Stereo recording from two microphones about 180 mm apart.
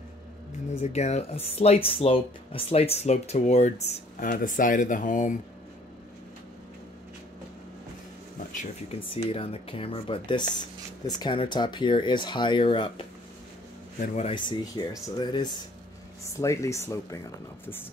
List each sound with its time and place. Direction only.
0.7 s speech: 35° left (ahead or behind)
9.1 s speech: 30° left (ahead or behind)
13.9 s speech: 40° left (ahead or behind)
14.9 s speech: 25° left (ahead or behind)